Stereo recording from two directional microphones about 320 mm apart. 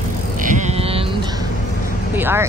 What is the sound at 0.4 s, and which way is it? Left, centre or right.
Vehicle, right.